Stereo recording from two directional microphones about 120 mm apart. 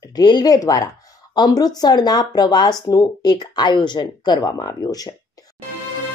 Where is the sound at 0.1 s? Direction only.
40° left (ahead or behind).